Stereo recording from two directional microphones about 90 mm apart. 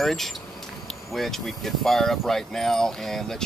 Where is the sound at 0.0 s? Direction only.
5° left (ahead or behind).